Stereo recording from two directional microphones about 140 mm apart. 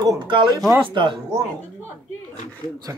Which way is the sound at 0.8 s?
40° right (ahead or behind).